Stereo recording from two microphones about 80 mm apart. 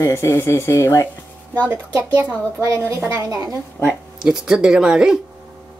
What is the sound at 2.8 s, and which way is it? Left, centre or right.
Speech, right.